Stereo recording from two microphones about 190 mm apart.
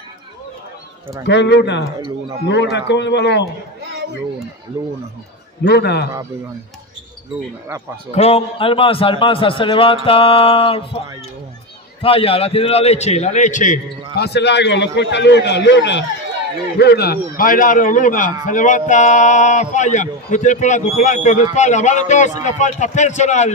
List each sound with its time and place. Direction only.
1.2 s speech: 65° left (ahead or behind)
2.0 s a man's voice: 25° right (ahead or behind)
2.4 s a man's voice: 65° left (ahead or behind)
5.6 s a man's voice: 60° left (ahead or behind)
8.1 s a man's voice: 35° left (ahead or behind)
12.0 s speech: 30° left (ahead or behind)
14.1 s a man's voice: 60° left (ahead or behind); by 23.5 s 40° left (ahead or behind)